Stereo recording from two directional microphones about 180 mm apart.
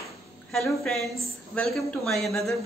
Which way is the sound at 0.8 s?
Centre (ahead or behind).